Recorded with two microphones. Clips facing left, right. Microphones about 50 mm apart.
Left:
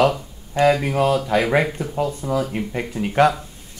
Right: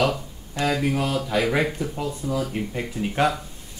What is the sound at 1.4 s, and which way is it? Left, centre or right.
Speech, centre.